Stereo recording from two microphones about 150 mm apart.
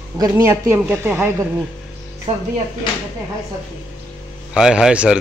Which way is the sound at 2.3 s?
45° right (ahead or behind).